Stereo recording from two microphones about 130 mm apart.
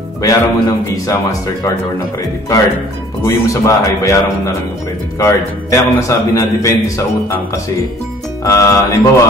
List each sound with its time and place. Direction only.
0.2 s a man's voice: 25° left (ahead or behind)
3.3 s a man's voice: 25° left (ahead or behind)
5.2 s a man's voice: 25° left (ahead or behind)